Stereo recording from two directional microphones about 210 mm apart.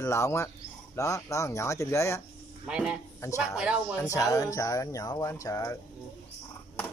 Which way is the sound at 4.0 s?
15° left (ahead or behind).